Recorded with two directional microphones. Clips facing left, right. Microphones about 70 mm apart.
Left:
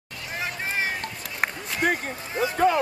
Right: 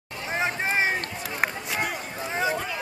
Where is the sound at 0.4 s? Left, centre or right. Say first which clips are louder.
Right 4 dB; right.